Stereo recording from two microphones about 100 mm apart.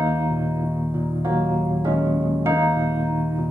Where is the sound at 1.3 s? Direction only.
25° right (ahead or behind).